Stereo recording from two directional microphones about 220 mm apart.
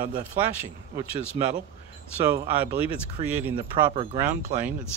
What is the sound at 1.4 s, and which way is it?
Speech, 15° right (ahead or behind).